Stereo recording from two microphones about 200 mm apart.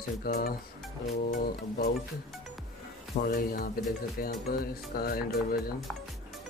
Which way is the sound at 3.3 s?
45° left (ahead or behind).